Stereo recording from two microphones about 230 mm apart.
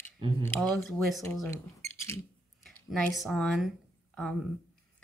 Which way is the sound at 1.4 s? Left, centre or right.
Centre.